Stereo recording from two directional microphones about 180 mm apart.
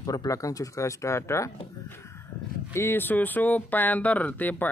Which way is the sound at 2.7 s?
15° left (ahead or behind).